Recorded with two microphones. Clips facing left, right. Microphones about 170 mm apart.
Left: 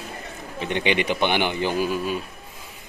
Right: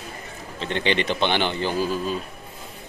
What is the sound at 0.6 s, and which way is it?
Speech, 15° left (ahead or behind).